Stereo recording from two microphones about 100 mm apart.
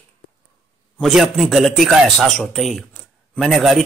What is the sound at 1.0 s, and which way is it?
A man's voice, 5° right (ahead or behind).